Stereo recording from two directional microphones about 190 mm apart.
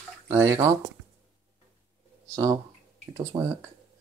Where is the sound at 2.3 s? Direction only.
20° right (ahead or behind).